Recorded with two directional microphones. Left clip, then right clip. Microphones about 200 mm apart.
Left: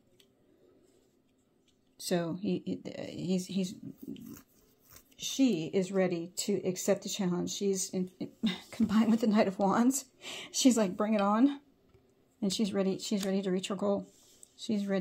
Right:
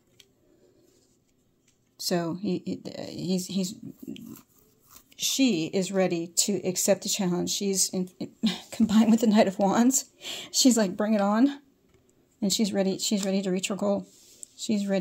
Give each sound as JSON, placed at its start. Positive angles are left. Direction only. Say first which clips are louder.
{"t": 2.0, "sound": "a woman's voice", "louder": "right 5 dB", "side_deg": -35}